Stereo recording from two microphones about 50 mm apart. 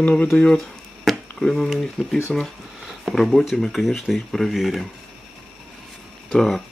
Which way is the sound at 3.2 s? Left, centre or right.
Centre.